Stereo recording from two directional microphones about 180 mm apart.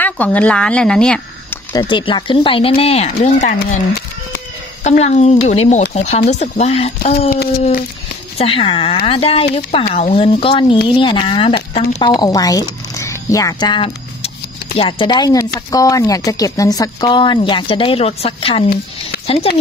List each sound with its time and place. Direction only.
0.0 s speech: 10° left (ahead or behind)
1.7 s speech: 25° left (ahead or behind); by 3.8 s 45° left (ahead or behind)
4.8 s speech: 40° left (ahead or behind)
7.2 s speech: 65° left (ahead or behind)
8.4 s speech: 30° left (ahead or behind)
12.2 s speech: 20° left (ahead or behind)
19.1 s a sound: 60° left (ahead or behind)